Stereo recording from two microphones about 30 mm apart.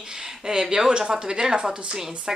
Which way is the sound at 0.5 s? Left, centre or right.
Right.